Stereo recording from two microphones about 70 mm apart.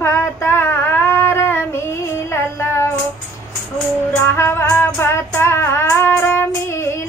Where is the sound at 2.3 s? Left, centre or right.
Left.